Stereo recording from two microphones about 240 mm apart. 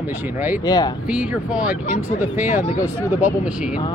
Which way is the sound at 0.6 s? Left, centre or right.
Centre.